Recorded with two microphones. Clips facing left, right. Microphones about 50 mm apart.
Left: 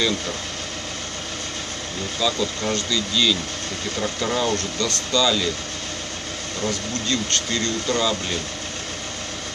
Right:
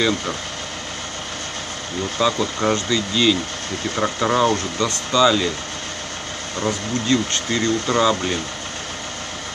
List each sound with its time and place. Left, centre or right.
2.1 s speech: right
7.1 s speech: centre